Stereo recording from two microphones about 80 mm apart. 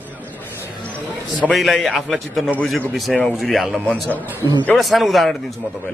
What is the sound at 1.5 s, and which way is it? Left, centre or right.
A man's voice, centre.